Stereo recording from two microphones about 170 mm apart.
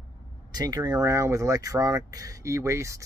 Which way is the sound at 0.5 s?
25° right (ahead or behind).